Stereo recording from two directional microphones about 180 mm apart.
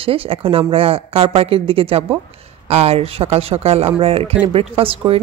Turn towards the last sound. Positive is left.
turn(degrees=-30)  # may be behind; listen again after turning